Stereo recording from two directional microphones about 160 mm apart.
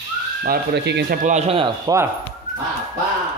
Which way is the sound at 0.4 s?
85° right.